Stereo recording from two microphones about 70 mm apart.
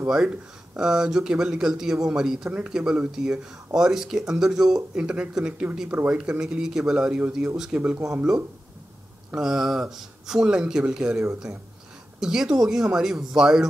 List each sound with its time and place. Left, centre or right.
0.1 s speech: centre
7.7 s speech: centre
9.3 s speech: centre